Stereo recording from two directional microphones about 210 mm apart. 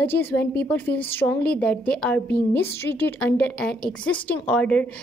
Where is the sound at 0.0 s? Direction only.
10° left (ahead or behind).